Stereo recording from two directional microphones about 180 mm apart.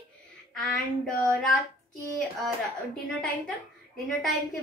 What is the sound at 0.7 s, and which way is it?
Speech, 5° left (ahead or behind).